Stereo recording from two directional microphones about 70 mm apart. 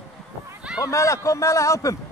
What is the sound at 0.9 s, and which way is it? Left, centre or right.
A man's voice, left.